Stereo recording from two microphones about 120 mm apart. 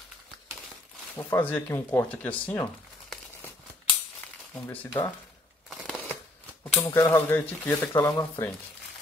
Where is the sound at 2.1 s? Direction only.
10° left (ahead or behind).